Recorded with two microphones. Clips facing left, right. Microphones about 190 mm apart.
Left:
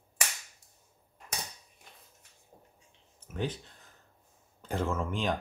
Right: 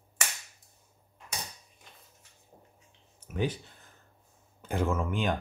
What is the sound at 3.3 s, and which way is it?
Speech, 10° right (ahead or behind).